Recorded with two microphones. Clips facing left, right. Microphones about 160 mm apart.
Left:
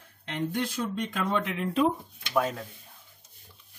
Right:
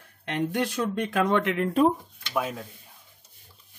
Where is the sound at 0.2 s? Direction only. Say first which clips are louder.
Right 3 dB; 70° right (ahead or behind).